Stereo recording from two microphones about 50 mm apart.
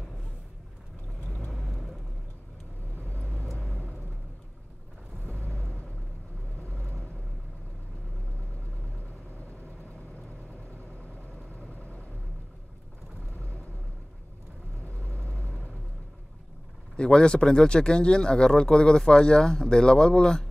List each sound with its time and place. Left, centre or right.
1.5 s vehicle: centre
3.0 s vehicle: left
5.2 s vehicle: left
11.5 s vehicle: left
13.3 s vehicle: left
15.2 s vehicle: left
16.9 s speech: centre